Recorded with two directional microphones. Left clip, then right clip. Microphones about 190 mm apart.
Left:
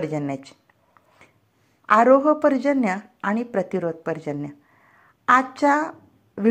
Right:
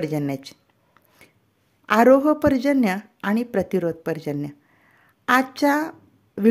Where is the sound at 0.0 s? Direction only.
35° right (ahead or behind).